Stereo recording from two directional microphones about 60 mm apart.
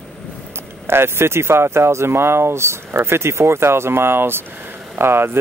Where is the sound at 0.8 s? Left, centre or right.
Right.